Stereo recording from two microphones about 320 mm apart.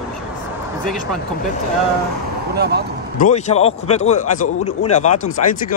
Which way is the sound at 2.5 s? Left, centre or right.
Right.